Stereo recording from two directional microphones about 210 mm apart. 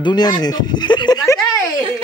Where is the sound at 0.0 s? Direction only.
20° left (ahead or behind).